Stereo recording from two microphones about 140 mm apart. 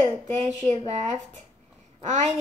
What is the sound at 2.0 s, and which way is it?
Babbling, 55° right (ahead or behind).